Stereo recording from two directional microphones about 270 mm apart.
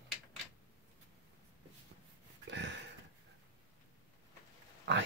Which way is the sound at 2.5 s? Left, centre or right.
Right.